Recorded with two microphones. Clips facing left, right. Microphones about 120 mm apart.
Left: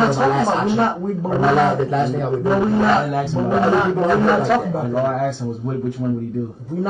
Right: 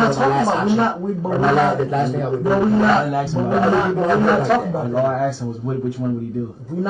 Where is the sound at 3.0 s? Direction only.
25° right (ahead or behind).